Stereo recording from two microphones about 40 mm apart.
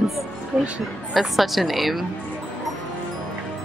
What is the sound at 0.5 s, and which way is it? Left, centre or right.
Speech, right.